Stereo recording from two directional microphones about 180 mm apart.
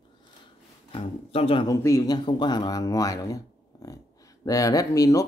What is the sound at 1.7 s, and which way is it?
Speech, 15° left (ahead or behind).